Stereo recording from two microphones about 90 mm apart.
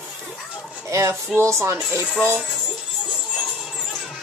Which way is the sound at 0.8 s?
35° right (ahead or behind).